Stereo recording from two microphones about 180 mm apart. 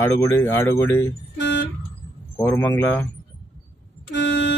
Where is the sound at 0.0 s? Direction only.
15° left (ahead or behind).